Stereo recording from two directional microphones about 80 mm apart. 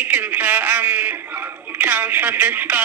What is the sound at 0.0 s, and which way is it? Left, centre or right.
Speech, right.